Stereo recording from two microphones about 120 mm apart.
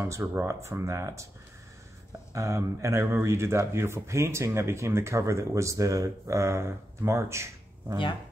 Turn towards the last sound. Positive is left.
turn(degrees=-25)  # may be behind; listen again after turning